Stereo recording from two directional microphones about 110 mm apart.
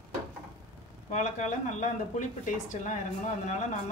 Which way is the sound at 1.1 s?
90° left.